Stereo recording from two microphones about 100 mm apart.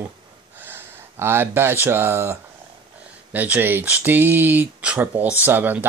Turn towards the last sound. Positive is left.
turn(degrees=-20)  # may be behind; listen again after turning